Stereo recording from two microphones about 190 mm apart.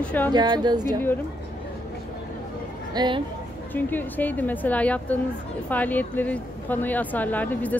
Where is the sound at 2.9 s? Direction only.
20° right (ahead or behind).